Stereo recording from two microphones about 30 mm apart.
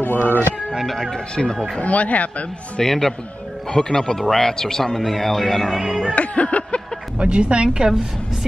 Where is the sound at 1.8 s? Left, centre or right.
Left.